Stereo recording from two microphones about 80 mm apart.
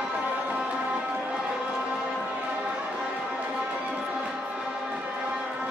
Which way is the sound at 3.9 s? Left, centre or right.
Centre.